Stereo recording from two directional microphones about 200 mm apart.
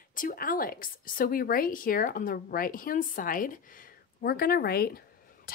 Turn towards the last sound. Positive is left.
turn(degrees=50)  # may be behind; listen again after turning